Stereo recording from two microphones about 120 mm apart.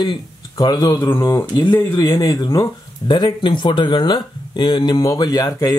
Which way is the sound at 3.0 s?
40° left (ahead or behind).